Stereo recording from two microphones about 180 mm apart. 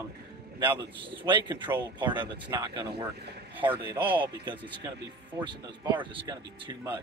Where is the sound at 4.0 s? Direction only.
10° right (ahead or behind).